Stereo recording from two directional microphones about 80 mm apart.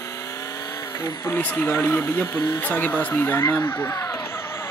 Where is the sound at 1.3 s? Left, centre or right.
Left.